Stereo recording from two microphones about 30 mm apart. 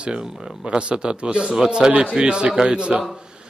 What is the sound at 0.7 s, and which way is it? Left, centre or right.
A man's voice, right.